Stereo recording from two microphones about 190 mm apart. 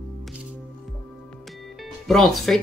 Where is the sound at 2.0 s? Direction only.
Centre (ahead or behind).